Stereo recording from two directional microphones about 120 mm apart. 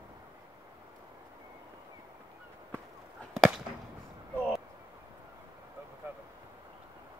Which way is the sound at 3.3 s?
Centre (ahead or behind).